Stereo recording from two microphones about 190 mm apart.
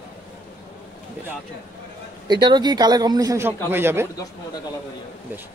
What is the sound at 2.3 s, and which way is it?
Speech, 25° right (ahead or behind).